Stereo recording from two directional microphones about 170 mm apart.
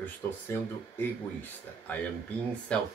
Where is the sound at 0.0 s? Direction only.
10° left (ahead or behind).